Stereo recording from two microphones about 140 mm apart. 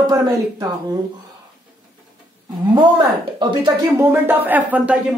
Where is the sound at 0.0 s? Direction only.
30° right (ahead or behind).